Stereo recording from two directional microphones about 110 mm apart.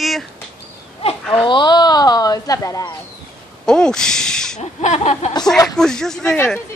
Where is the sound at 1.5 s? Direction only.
45° left (ahead or behind).